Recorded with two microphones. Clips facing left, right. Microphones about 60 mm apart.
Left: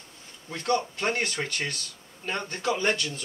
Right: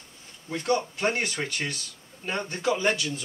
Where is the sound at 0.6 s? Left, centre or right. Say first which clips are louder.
Right 1 dB; centre.